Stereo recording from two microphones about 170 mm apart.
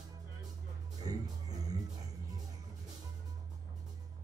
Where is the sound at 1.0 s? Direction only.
20° right (ahead or behind).